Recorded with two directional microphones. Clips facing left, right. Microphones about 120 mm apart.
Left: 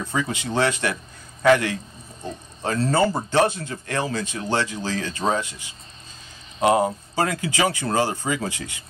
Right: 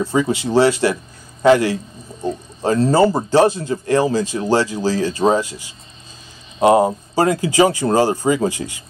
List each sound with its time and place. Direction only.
0.0 s a man's voice: 30° right (ahead or behind)
2.2 s a sound: 35° right (ahead or behind)
2.9 s speech: 35° right (ahead or behind)
6.6 s speech: 30° right (ahead or behind)